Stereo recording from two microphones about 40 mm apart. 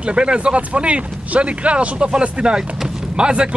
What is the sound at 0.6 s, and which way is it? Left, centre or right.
Speech, right.